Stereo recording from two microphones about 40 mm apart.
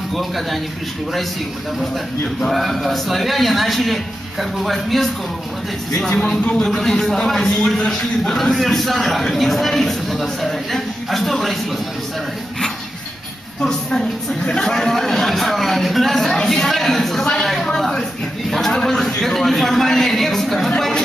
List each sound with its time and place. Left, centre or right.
0.1 s speech: centre
2.5 s speech: centre
5.9 s speech: centre
13.6 s a woman's voice: centre
17.6 s a sound: centre